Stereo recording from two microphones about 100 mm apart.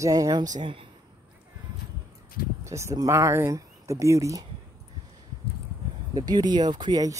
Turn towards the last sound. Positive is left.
turn(degrees=-45)  # may be behind; listen again after turning